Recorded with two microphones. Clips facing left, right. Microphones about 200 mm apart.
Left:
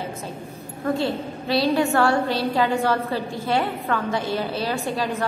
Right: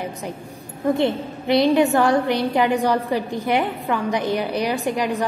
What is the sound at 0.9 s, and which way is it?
A woman's voice, 20° right (ahead or behind).